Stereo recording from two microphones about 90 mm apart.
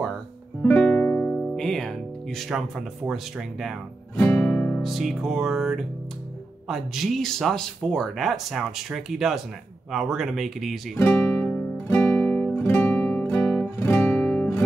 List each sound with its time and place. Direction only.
0.7 s music: 15° left (ahead or behind)
1.4 s speech: 5° left (ahead or behind)
4.4 s music: 15° left (ahead or behind)
4.8 s speech: centre (ahead or behind)
11.0 s speech: 25° left (ahead or behind)
11.3 s music: 10° left (ahead or behind)
11.9 s guitar: 25° left (ahead or behind)
14.2 s guitar: 15° left (ahead or behind)